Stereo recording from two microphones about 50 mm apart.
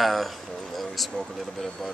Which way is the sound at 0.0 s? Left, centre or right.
Centre.